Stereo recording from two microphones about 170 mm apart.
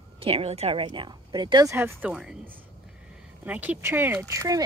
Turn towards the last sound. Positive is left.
turn(degrees=-15)  # may be behind; listen again after turning